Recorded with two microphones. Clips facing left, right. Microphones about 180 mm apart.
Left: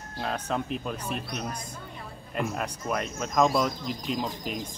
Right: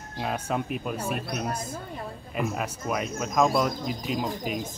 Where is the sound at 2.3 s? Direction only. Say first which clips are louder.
Right 1 dB; 5° right (ahead or behind).